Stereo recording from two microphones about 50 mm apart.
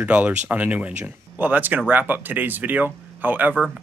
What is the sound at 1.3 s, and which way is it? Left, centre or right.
Speech, right.